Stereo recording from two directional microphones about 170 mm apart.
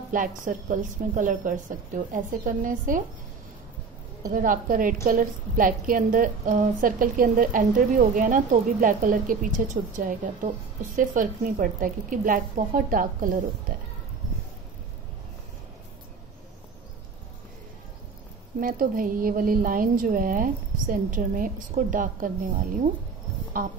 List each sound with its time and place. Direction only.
0.1 s a woman's voice: 50° right (ahead or behind)
4.2 s a woman's voice: 55° right (ahead or behind)
18.6 s a woman's voice: 55° right (ahead or behind)